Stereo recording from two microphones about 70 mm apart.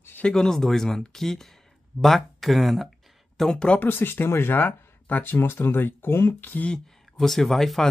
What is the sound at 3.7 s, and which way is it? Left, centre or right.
Speech, left.